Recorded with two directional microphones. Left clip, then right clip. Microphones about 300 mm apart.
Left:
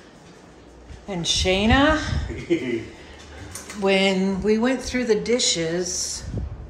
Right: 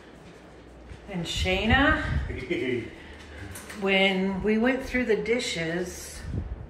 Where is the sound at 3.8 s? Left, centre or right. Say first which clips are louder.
Left 3 dB; centre.